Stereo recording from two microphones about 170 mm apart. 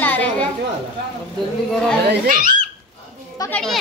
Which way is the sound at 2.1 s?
55° right (ahead or behind).